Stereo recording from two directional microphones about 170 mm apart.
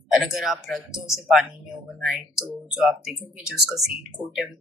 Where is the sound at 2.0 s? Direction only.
Centre (ahead or behind).